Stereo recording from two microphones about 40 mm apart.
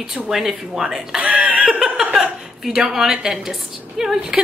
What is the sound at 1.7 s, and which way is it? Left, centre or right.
Laughter, centre.